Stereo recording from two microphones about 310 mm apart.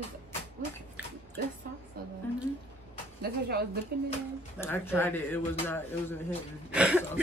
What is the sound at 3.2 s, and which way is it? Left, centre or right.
Speech, right.